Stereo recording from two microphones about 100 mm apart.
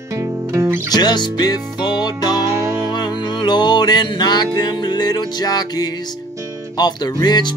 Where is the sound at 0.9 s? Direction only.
45° left (ahead or behind).